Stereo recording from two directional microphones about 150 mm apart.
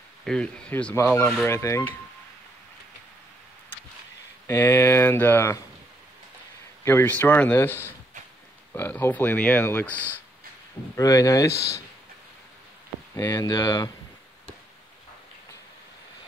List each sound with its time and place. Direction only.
0.2 s speech: 5° left (ahead or behind)
4.5 s speech: 15° left (ahead or behind)
6.8 s speech: 15° left (ahead or behind)
11.0 s speech: 20° left (ahead or behind)
13.1 s speech: 20° left (ahead or behind)